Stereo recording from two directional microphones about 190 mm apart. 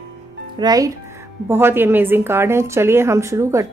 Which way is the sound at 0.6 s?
20° right (ahead or behind).